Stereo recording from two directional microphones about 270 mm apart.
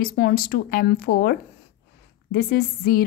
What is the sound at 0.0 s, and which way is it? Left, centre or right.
Speech, left.